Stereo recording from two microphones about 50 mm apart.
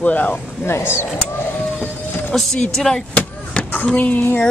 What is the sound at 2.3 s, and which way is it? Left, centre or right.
Speech, centre.